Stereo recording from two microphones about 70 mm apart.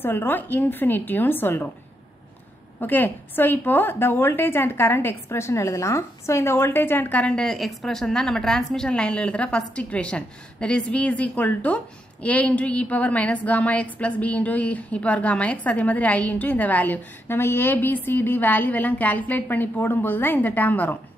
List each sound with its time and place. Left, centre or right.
0.0 s a woman's voice: left
2.8 s a woman's voice: left
7.5 s a woman's voice: centre; by 20.9 s left